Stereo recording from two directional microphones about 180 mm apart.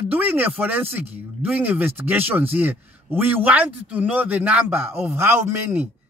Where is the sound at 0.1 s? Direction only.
10° right (ahead or behind).